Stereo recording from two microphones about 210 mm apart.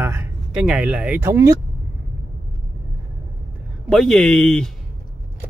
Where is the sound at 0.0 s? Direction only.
10° right (ahead or behind).